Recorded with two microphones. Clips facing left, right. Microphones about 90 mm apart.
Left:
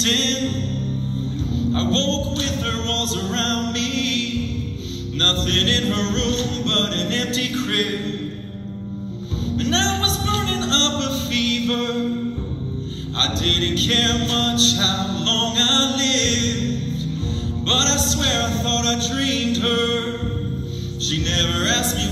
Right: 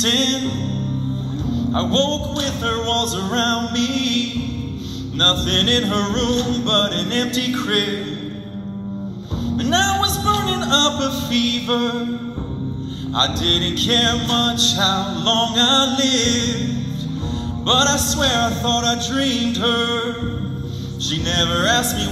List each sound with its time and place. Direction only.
0.0 s music: 50° right (ahead or behind)
1.5 s music: 50° right (ahead or behind)
9.6 s music: 50° right (ahead or behind)
13.2 s music: 50° right (ahead or behind)
17.6 s music: 50° right (ahead or behind)
21.1 s music: 50° right (ahead or behind)